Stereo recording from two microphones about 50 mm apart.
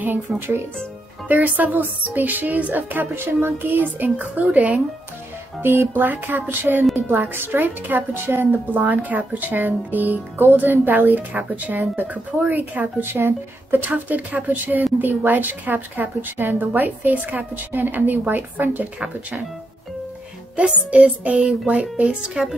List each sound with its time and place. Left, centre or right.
0.3 s speech: centre
1.3 s a woman's voice: right
5.6 s speech: right
5.9 s a woman's voice: right
8.4 s a woman's voice: right
13.0 s a woman's voice: right
20.9 s music: right
22.0 s speech: centre